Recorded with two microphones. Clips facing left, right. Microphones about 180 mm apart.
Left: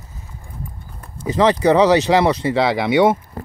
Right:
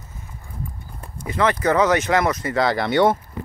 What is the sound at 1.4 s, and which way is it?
Speech, 30° left (ahead or behind).